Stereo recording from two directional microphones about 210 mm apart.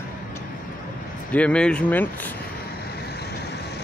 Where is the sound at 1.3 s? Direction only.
5° left (ahead or behind).